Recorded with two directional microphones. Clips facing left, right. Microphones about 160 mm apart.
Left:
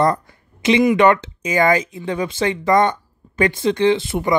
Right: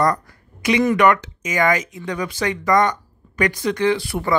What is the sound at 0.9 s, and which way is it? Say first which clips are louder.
Speech: left 2 dB; 25° left (ahead or behind).